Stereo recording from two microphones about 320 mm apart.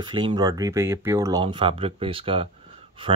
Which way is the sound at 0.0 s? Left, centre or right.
Centre.